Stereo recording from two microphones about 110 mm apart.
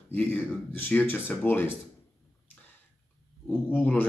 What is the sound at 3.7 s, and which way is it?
Speech, 15° left (ahead or behind).